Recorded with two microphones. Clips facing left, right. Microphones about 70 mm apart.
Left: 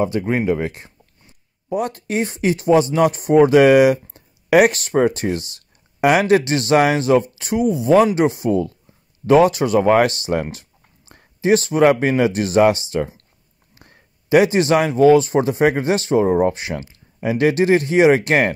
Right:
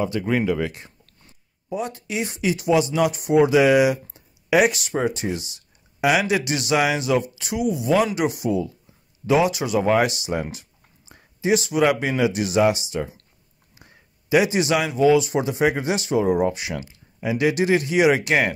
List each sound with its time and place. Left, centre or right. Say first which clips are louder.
0.0 s speech: left 3 dB; left
1.7 s speech: left 6 dB; left